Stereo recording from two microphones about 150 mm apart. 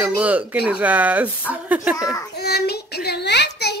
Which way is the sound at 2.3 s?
90° left.